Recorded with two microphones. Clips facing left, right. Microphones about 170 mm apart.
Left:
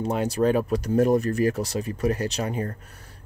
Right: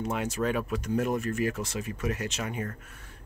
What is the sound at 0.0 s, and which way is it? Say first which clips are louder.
Speech: left 7 dB; 35° left (ahead or behind).